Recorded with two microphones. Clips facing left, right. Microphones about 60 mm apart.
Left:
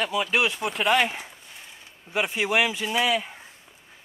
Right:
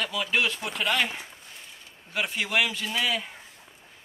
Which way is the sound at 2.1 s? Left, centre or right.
Centre.